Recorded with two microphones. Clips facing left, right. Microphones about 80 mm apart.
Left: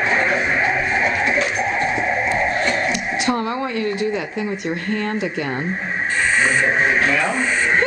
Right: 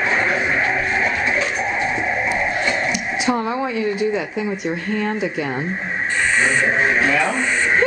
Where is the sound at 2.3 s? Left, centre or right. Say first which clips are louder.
Left 1 dB; centre.